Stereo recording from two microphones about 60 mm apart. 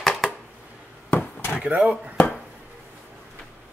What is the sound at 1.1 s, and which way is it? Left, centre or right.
Chop, left.